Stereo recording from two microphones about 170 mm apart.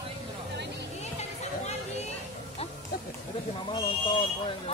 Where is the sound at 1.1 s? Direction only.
40° left (ahead or behind).